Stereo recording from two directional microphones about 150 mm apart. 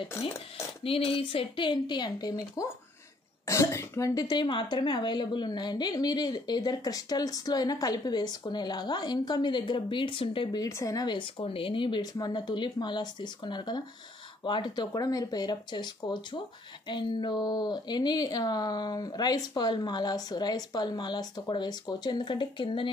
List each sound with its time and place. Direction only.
0.8 s a woman's voice: 40° left (ahead or behind)